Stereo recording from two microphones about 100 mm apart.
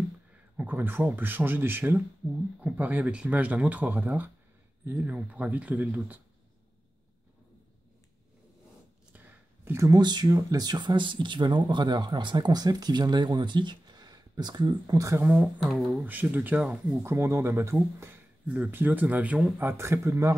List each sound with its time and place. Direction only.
0.6 s speech: 20° right (ahead or behind)
9.1 s a sound: 20° right (ahead or behind)
9.8 s speech: 40° right (ahead or behind)
15.0 s speech: 30° right (ahead or behind)
15.2 s speech: 15° right (ahead or behind)
15.6 s speech: centre (ahead or behind)
15.9 s speech: 20° right (ahead or behind)
17.0 s speech: 25° right (ahead or behind)
19.6 s speech: 25° right (ahead or behind)